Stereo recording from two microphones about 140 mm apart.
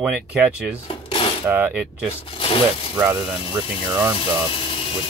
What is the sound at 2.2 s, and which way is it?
Speech, 40° left (ahead or behind).